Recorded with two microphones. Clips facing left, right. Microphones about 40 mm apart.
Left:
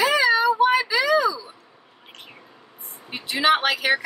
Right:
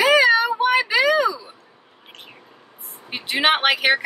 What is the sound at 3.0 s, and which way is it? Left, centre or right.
Speech, right.